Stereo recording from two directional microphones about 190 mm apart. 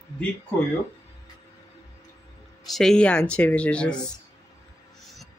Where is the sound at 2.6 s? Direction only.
Centre (ahead or behind).